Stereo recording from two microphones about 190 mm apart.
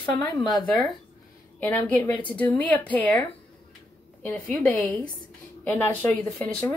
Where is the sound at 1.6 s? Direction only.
5° left (ahead or behind).